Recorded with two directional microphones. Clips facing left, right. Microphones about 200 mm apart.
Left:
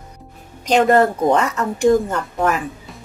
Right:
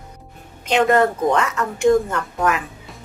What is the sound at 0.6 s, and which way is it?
Speech, 35° left (ahead or behind).